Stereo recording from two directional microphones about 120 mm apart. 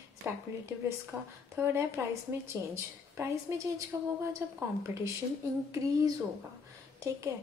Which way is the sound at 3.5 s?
25° right (ahead or behind).